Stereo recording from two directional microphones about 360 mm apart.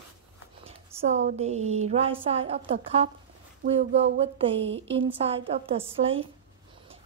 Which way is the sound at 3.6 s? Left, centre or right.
Right.